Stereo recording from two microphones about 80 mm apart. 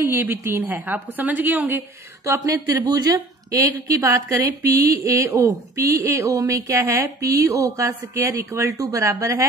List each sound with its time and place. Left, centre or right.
0.0 s a woman's voice: right
2.2 s a woman's voice: right